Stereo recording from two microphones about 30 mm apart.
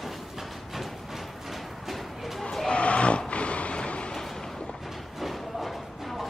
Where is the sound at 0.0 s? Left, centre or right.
Centre.